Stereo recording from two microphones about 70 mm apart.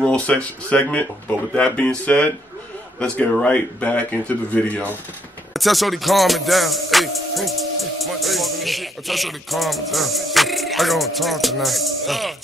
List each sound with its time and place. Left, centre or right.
0.0 s speech: centre
5.5 s music: centre